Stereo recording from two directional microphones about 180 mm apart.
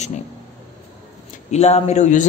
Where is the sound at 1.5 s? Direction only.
35° left (ahead or behind).